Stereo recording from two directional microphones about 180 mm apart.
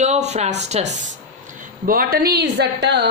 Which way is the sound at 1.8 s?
55° right (ahead or behind).